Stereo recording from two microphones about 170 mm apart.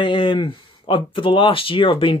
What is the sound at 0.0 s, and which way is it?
Speech, 30° left (ahead or behind).